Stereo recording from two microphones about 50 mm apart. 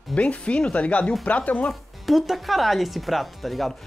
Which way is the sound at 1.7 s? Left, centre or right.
Centre.